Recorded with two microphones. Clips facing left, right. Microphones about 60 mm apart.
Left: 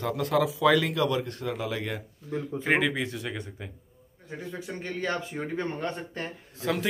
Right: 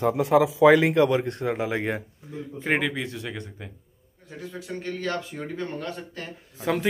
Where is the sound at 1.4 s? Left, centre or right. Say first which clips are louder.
Right 5 dB; right.